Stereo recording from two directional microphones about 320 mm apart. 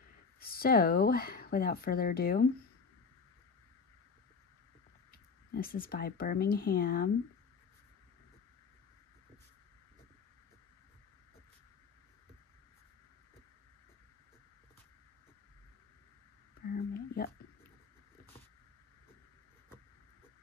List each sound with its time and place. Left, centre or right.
0.4 s speech: left
5.5 s speech: left
16.6 s a sound: left